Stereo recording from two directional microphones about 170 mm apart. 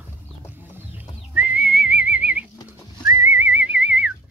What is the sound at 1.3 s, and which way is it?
Whistling, 10° right (ahead or behind).